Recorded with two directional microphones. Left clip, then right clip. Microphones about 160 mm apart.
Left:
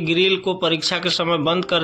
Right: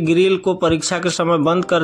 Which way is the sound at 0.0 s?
45° right (ahead or behind).